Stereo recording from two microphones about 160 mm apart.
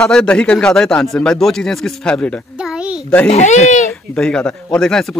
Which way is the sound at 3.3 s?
45° left (ahead or behind).